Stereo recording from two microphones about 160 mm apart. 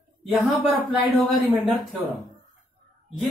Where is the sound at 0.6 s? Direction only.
10° right (ahead or behind).